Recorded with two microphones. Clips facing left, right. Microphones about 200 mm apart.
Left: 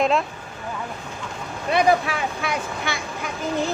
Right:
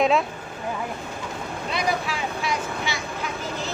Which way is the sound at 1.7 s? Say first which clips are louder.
Left 8 dB; 55° left (ahead or behind).